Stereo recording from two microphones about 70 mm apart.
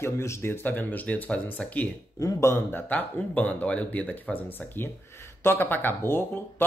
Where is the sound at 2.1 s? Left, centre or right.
Left.